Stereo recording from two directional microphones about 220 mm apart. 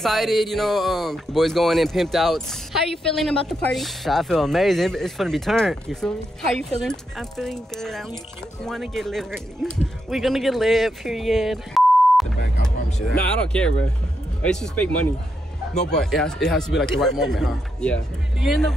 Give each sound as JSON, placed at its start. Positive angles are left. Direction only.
{"t": 0.0, "sound": "speech", "side_deg": 0}